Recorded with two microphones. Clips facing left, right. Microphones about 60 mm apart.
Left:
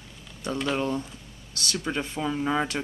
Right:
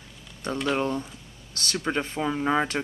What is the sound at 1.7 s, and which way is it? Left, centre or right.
Speech, right.